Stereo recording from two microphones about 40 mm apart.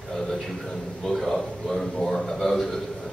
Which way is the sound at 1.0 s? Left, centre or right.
Centre.